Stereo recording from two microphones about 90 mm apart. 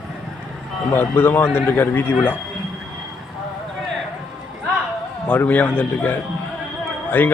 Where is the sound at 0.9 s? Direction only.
25° left (ahead or behind).